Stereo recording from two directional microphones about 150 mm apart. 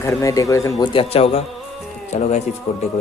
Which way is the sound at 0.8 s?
35° left (ahead or behind).